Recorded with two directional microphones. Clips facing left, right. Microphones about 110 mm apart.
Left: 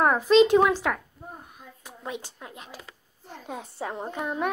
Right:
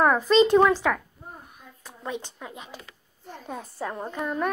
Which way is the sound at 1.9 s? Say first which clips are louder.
Right 2 dB; 5° left (ahead or behind).